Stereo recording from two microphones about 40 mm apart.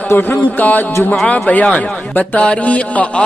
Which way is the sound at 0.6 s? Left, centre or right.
Left.